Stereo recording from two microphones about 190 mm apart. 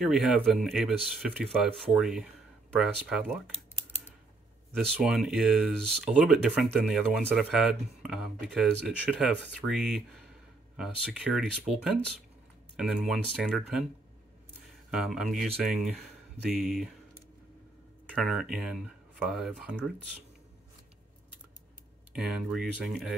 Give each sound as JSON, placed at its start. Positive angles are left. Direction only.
{"t": 0.0, "sound": "speech", "side_deg": 0}
{"t": 4.7, "sound": "speech", "side_deg": 0}
{"t": 12.7, "sound": "speech", "side_deg": 0}
{"t": 14.9, "sound": "speech", "side_deg": -5}
{"t": 18.1, "sound": "speech", "side_deg": 0}
{"t": 22.1, "sound": "speech", "side_deg": -5}